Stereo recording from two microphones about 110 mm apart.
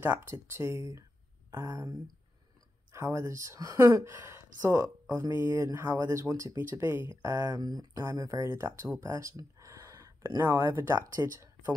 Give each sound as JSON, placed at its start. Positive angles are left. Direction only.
{"t": 0.1, "sound": "speech", "side_deg": -25}
{"t": 2.9, "sound": "speech", "side_deg": -25}